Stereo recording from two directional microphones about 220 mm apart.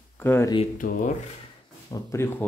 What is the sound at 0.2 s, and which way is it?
Speech, 10° left (ahead or behind).